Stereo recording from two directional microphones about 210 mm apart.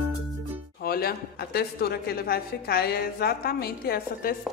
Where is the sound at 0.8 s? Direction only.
45° left (ahead or behind).